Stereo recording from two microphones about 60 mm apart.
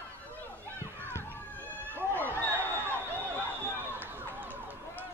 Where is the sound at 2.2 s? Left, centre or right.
Right.